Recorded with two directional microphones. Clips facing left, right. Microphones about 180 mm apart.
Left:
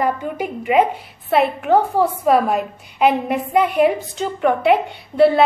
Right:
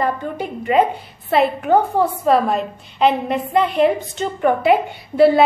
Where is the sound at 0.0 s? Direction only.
10° left (ahead or behind).